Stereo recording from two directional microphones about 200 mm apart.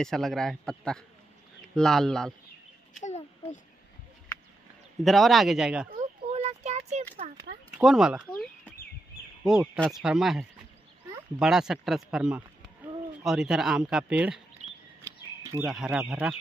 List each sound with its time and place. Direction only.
0.0 s speech: centre (ahead or behind)
3.0 s a sound: 35° left (ahead or behind)
5.0 s speech: centre (ahead or behind)
5.9 s a sound: 35° right (ahead or behind)
7.8 s speech: 5° right (ahead or behind)
9.5 s speech: centre (ahead or behind)
15.6 s speech: 5° right (ahead or behind)